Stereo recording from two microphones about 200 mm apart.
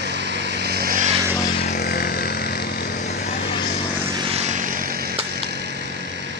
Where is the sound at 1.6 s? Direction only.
45° left (ahead or behind).